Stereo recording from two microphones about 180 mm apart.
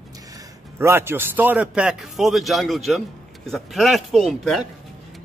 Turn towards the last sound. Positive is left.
turn(degrees=0)  # may be behind; listen again after turning